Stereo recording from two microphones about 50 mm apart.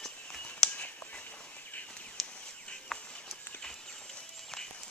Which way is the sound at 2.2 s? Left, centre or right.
Centre.